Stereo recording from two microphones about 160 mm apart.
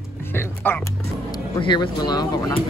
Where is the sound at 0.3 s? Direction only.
15° left (ahead or behind).